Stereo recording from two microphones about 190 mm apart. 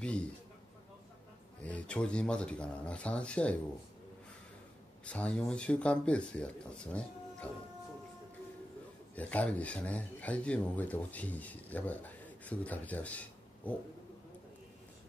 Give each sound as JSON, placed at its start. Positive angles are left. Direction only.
{"t": 0.0, "sound": "speech", "side_deg": 5}
{"t": 1.6, "sound": "speech", "side_deg": 5}
{"t": 5.0, "sound": "speech", "side_deg": 5}
{"t": 9.1, "sound": "speech", "side_deg": 10}